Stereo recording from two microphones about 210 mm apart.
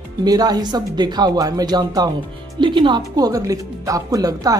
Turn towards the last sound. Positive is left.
turn(degrees=-15)  # may be behind; listen again after turning